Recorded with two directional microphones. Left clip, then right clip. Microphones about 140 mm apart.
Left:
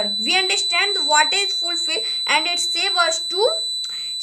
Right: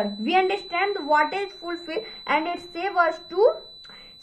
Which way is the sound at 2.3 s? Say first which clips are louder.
Left 5 dB; 15° left (ahead or behind).